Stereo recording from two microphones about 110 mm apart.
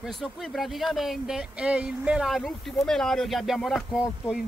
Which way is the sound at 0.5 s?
Centre (ahead or behind).